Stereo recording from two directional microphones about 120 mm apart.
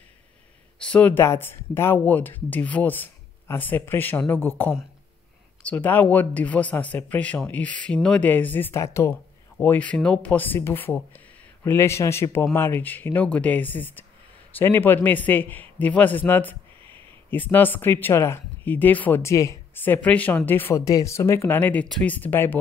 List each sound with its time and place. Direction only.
0.7 s a man's voice: 10° left (ahead or behind); by 9.1 s 25° left (ahead or behind)
9.6 s a man's voice: 15° left (ahead or behind)